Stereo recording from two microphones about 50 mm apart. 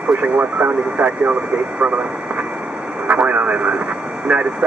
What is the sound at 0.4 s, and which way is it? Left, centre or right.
Speech, right.